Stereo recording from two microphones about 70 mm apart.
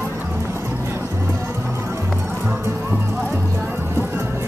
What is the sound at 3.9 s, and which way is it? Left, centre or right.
Music, right.